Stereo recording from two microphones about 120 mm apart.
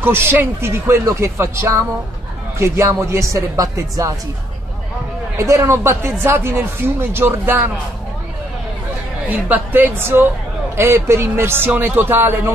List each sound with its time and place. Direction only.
0.0 s speech: 20° right (ahead or behind)
5.4 s speech: 20° right (ahead or behind)
9.3 s a woman's voice: 15° right (ahead or behind)